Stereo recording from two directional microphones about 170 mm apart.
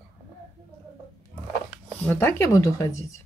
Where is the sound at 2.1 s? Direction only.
15° left (ahead or behind).